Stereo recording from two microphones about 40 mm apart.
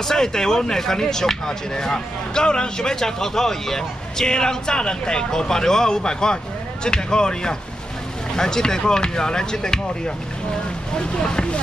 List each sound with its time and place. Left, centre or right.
0.0 s speech: centre
11.2 s speech: left